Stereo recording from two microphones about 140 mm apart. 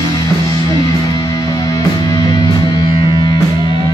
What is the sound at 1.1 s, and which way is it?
Music, 30° left (ahead or behind).